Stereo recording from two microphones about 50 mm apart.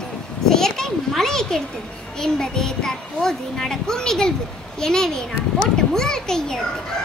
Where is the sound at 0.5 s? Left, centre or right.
Centre.